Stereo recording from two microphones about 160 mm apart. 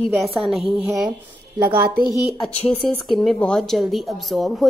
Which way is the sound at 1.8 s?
70° right (ahead or behind).